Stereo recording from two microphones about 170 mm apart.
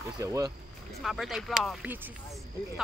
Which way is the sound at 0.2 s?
20° right (ahead or behind).